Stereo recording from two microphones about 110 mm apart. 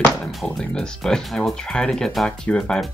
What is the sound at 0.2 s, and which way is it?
Speech, centre (ahead or behind).